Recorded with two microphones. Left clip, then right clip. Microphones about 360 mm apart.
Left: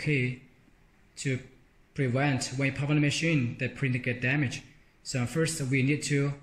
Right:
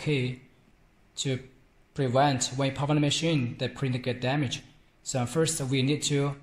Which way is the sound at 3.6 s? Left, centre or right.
Right.